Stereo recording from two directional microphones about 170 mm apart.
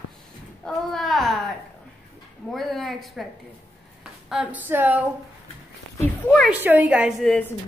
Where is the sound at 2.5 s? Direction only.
Centre (ahead or behind).